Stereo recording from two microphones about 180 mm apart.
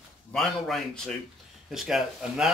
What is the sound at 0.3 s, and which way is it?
Speech, centre (ahead or behind).